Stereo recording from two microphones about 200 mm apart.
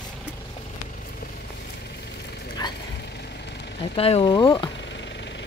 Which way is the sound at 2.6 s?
20° left (ahead or behind).